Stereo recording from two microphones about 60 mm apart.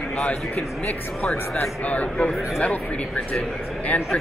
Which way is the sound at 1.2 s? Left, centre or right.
Centre.